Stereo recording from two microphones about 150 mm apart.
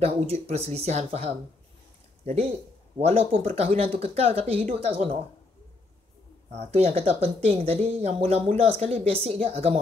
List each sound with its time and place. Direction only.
0.0 s speech: 45° right (ahead or behind)
6.5 s speech: 45° right (ahead or behind)